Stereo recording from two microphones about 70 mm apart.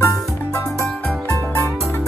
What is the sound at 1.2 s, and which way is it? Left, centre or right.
Music, left.